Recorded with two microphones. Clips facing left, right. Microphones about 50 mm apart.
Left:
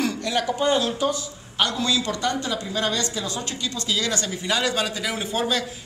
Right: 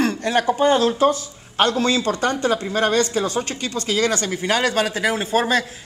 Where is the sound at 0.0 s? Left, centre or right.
Right.